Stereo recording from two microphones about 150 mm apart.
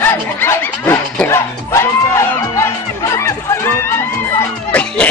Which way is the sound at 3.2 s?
20° left (ahead or behind).